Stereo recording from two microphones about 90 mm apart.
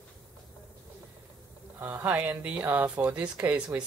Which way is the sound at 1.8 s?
20° right (ahead or behind).